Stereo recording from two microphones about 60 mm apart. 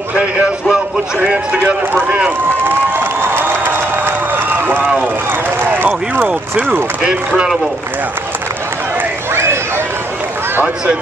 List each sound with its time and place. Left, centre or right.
0.1 s speech: centre
3.0 s crowd: right
5.7 s speech: right
7.0 s speech: centre
9.3 s a sound: right